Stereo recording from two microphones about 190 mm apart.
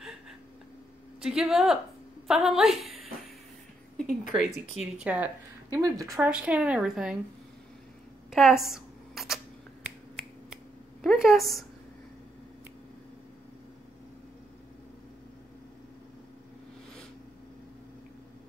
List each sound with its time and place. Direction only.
1.2 s a woman's voice: centre (ahead or behind)
4.7 s speech: 5° right (ahead or behind)
5.7 s speech: 20° right (ahead or behind)
6.1 s a woman's voice: 5° right (ahead or behind)
8.3 s camera: centre (ahead or behind)
9.8 s finger snapping: 5° right (ahead or behind)
11.0 s a woman's voice: centre (ahead or behind)